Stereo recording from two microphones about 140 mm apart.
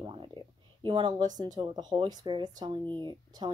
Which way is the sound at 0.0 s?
35° right (ahead or behind).